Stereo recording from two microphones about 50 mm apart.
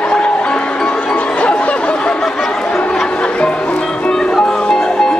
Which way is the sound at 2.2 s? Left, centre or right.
Centre.